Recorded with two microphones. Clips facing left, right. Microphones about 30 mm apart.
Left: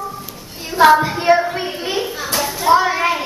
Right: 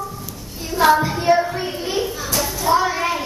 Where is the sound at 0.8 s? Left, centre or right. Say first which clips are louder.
Left 4 dB; left.